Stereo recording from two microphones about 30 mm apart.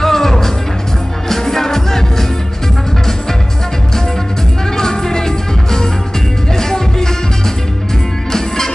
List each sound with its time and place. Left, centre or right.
0.0 s music: centre
4.7 s music: centre